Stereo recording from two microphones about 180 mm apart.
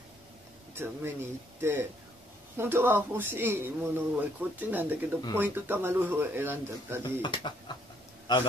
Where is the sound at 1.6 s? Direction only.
15° right (ahead or behind).